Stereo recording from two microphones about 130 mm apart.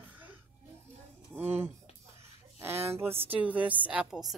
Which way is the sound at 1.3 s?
15° right (ahead or behind).